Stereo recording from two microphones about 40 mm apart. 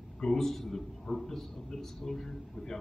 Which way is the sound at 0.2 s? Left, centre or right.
Centre.